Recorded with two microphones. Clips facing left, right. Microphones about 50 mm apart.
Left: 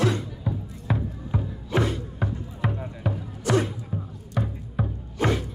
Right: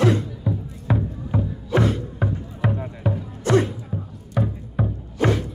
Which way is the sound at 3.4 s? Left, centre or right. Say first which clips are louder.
Right 4 dB; right.